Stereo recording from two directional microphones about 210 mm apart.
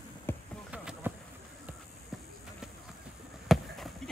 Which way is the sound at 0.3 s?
10° left (ahead or behind).